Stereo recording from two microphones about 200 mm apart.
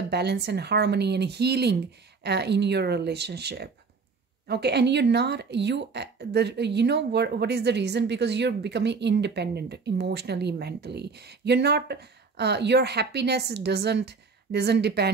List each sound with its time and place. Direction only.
0.1 s a woman's voice: 55° right (ahead or behind)